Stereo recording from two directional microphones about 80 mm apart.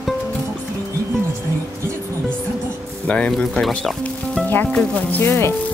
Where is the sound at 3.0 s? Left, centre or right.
Centre.